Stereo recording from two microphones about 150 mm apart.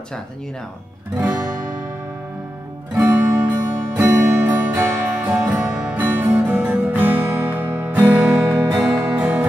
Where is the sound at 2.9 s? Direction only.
10° right (ahead or behind).